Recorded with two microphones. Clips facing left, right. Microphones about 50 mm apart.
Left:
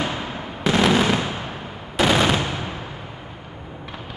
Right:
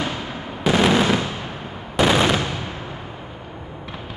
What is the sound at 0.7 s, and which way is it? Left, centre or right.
Fireworks, centre.